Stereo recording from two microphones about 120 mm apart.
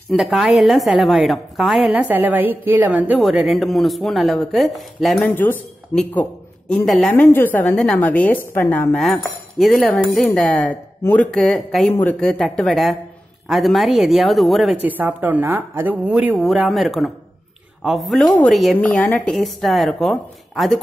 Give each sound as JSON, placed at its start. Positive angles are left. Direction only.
{"t": 0.1, "sound": "a woman's voice", "side_deg": 0}
{"t": 3.2, "sound": "speech", "side_deg": 0}
{"t": 5.3, "sound": "a woman's voice", "side_deg": 15}
{"t": 6.7, "sound": "speech", "side_deg": 5}
{"t": 7.2, "sound": "a woman's voice", "side_deg": 15}
{"t": 7.7, "sound": "a woman's voice", "side_deg": 5}
{"t": 8.9, "sound": "speech", "side_deg": 0}
{"t": 14.8, "sound": "a woman's voice", "side_deg": -15}
{"t": 16.3, "sound": "speech", "side_deg": 0}
{"t": 18.8, "sound": "speech", "side_deg": 10}